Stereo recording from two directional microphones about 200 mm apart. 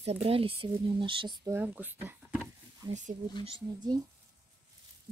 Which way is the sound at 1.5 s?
10° right (ahead or behind).